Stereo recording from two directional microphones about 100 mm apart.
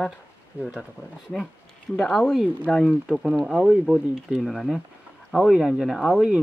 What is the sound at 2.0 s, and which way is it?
Speech, centre (ahead or behind).